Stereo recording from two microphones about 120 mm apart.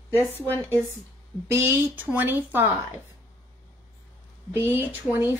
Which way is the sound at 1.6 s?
15° right (ahead or behind).